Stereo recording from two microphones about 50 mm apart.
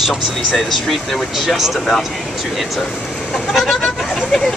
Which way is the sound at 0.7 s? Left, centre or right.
Centre.